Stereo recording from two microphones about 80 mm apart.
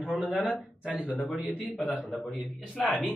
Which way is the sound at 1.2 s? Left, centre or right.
Centre.